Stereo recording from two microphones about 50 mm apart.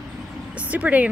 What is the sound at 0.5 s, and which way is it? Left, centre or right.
Speech, right.